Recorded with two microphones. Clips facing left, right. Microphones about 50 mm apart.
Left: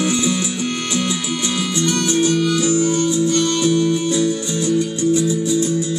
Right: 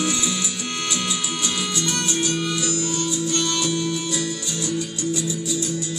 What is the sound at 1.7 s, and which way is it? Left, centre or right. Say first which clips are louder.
Music: left 6 dB; left.